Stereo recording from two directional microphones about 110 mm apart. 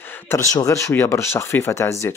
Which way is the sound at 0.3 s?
30° left (ahead or behind).